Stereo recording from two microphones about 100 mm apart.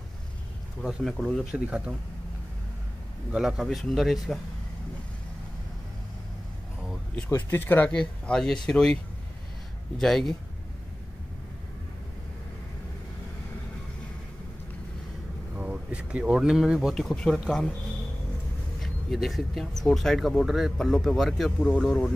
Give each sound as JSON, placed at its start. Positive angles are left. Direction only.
{"t": 0.8, "sound": "speech", "side_deg": -5}
{"t": 3.3, "sound": "speech", "side_deg": -5}
{"t": 7.2, "sound": "speech", "side_deg": 25}
{"t": 15.5, "sound": "speech", "side_deg": -10}
{"t": 16.9, "sound": "speech", "side_deg": 5}
{"t": 18.8, "sound": "speech", "side_deg": 0}